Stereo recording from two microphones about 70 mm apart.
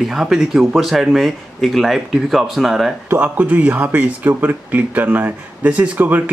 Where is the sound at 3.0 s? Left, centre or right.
Right.